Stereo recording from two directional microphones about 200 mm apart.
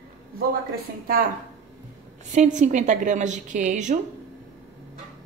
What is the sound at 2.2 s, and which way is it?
Speech, 35° right (ahead or behind).